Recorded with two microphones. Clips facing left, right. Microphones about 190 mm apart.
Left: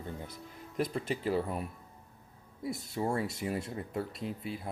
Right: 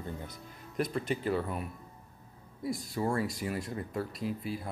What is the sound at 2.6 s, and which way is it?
Speech, 25° left (ahead or behind).